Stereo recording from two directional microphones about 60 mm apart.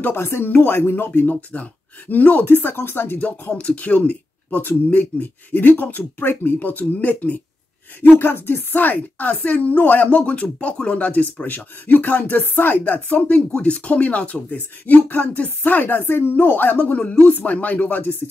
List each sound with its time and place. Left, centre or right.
0.0 s speech: left
3.2 s a woman's voice: left
8.2 s a woman's voice: left; by 17.4 s centre
17.4 s speech: left